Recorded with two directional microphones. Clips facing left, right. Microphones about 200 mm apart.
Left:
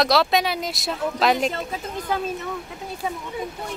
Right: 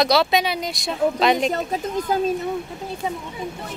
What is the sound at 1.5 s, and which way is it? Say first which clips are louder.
Speech: right 5 dB; 40° right (ahead or behind).